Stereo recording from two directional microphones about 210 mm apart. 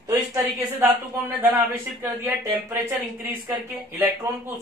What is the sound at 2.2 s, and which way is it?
A woman's voice, 10° right (ahead or behind).